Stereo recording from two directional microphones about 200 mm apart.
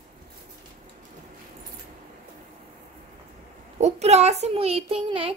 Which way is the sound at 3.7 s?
35° right (ahead or behind).